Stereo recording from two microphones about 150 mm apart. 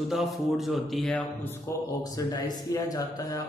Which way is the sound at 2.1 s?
25° left (ahead or behind).